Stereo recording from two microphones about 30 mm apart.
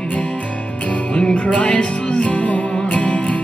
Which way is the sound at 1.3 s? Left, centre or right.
Left.